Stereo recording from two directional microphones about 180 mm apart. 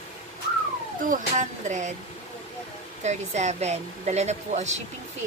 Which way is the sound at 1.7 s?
40° right (ahead or behind).